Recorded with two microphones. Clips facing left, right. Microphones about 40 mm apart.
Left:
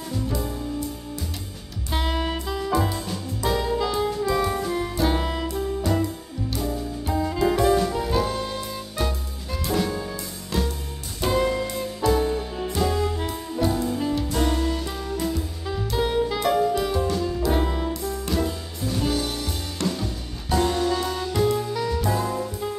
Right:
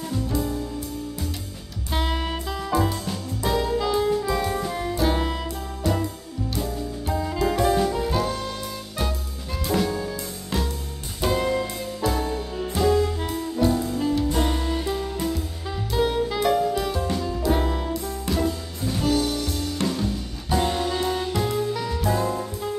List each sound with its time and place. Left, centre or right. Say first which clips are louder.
1.9 s music: left 1 dB; centre
3.4 s saxophone: even; centre
7.1 s saxophone: left 2 dB; centre
11.2 s music: left 1 dB; centre
14.3 s music: left 1 dB; centre
20.6 s music: left 2 dB; centre
21.3 s music: left 2 dB; centre